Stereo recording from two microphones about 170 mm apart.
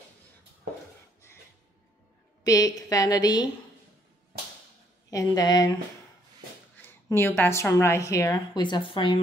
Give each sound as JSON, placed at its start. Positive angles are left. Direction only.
{"t": 2.4, "sound": "a woman's voice", "side_deg": 20}
{"t": 5.1, "sound": "a woman's voice", "side_deg": 20}
{"t": 6.8, "sound": "a woman's voice", "side_deg": 15}